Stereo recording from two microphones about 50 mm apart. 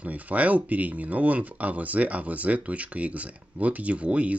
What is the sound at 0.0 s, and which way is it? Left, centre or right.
Speech, right.